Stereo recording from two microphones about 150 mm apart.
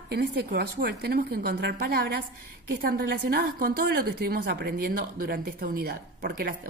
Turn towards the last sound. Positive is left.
turn(degrees=-90)